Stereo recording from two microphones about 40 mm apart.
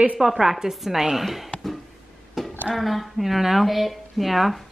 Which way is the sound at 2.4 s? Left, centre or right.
Centre.